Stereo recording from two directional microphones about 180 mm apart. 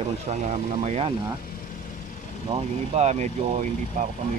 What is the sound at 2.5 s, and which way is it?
Speech, 35° right (ahead or behind).